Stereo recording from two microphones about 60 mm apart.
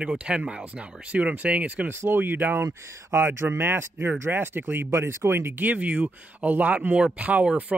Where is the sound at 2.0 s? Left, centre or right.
Right.